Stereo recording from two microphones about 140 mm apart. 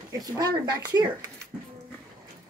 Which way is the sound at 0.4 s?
30° right (ahead or behind).